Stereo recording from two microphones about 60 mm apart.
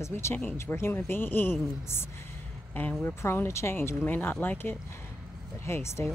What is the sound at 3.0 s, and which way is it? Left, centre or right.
Speech, left.